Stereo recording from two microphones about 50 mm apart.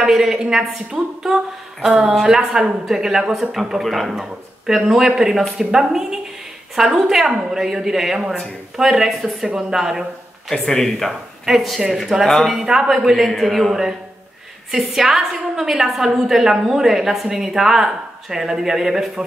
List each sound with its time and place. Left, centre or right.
0.0 s a woman's voice: centre
10.5 s speech: centre
12.5 s a woman's voice: centre